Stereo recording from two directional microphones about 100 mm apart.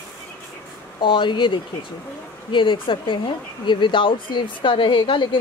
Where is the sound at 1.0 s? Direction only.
55° left (ahead or behind).